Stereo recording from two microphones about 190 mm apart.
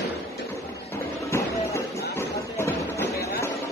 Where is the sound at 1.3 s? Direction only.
15° left (ahead or behind).